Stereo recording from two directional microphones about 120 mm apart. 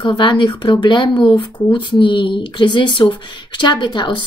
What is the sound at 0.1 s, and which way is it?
Speech, 40° left (ahead or behind).